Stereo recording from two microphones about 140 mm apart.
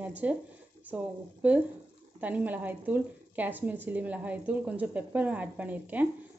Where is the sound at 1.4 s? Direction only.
10° right (ahead or behind).